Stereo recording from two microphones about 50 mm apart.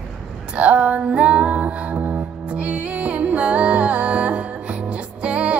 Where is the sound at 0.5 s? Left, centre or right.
Right.